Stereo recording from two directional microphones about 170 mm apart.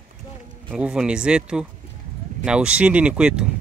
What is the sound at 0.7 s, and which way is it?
Speech, 5° right (ahead or behind).